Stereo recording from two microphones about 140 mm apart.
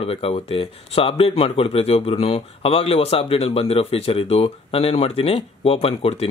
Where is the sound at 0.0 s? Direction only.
45° left (ahead or behind).